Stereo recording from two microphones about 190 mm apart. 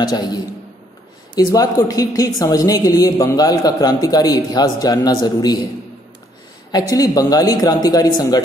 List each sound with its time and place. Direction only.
0.0 s a woman's voice: 20° left (ahead or behind)
6.9 s a woman's voice: 20° left (ahead or behind)